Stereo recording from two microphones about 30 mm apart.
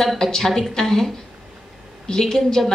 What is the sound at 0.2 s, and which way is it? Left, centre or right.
A woman's voice, centre.